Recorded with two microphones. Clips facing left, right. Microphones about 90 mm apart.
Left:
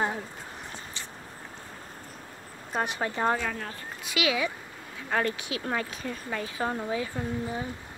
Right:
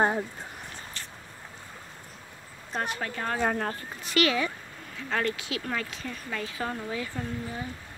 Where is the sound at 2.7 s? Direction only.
15° left (ahead or behind).